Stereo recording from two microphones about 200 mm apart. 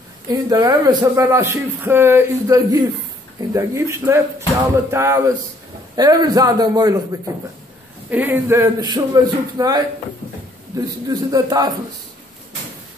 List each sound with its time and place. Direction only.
0.3 s a man's voice: 20° right (ahead or behind)